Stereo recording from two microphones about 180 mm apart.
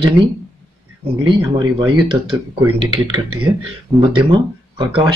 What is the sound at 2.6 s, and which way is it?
Speech, 25° right (ahead or behind).